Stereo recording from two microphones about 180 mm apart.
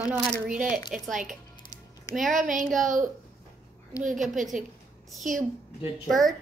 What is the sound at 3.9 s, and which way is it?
Speech, 20° left (ahead or behind).